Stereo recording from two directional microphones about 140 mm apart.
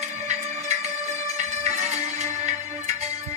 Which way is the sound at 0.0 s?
55° right (ahead or behind).